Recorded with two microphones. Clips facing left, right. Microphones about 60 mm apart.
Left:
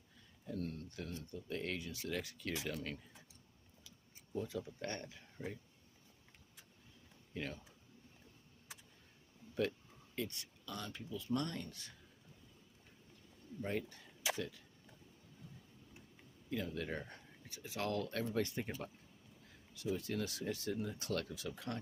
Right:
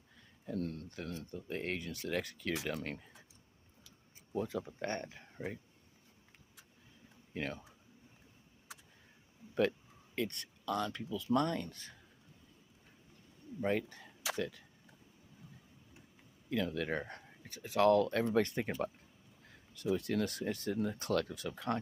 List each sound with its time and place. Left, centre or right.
0.5 s speech: right
4.4 s speech: right
7.3 s speech: right
9.6 s speech: right
11.4 s speech: right
13.6 s speech: right
16.4 s speech: right
20.0 s speech: right